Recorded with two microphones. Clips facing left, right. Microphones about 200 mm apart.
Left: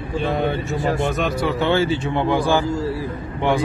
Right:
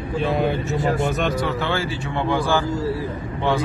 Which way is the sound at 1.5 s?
20° left (ahead or behind).